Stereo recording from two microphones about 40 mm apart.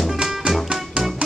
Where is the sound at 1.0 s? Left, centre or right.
Right.